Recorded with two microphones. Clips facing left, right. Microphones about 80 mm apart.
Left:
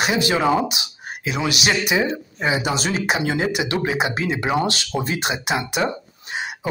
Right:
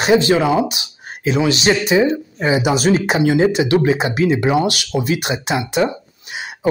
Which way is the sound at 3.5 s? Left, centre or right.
Centre.